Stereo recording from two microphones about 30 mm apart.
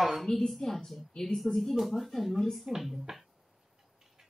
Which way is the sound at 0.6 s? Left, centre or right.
Centre.